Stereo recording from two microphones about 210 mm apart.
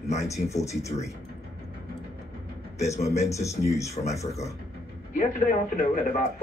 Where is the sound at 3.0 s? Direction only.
30° left (ahead or behind).